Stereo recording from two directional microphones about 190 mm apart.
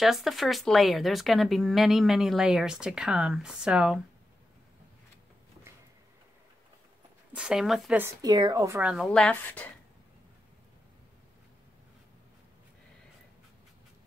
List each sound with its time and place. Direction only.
0.0 s speech: centre (ahead or behind)
7.3 s speech: 5° right (ahead or behind)
8.0 s speech: 15° right (ahead or behind)
8.9 s a woman's voice: 5° left (ahead or behind)